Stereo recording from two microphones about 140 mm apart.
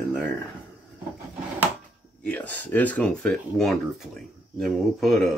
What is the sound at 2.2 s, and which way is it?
Speech, 10° left (ahead or behind).